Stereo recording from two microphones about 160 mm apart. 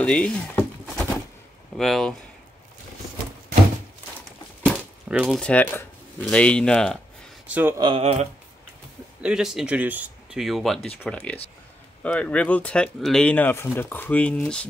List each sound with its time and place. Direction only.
0.0 s a sound: 5° left (ahead or behind)
1.8 s speech: centre (ahead or behind)
5.0 s speech: 5° right (ahead or behind)
5.4 s speech: 10° left (ahead or behind)
7.4 s a sound: 10° right (ahead or behind)
7.7 s speech: 25° right (ahead or behind)
8.0 s speech: 40° right (ahead or behind)
9.2 s speech: 5° right (ahead or behind)